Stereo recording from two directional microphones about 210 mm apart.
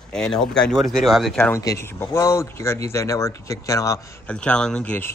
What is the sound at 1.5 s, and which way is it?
Speech, 15° left (ahead or behind).